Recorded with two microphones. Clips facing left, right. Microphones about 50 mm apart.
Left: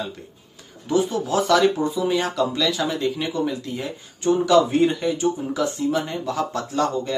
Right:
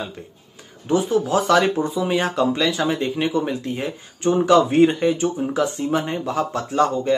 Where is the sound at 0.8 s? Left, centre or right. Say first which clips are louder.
Right 2 dB; right.